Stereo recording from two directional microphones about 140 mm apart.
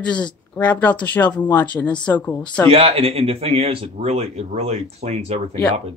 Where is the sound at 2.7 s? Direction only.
45° right (ahead or behind).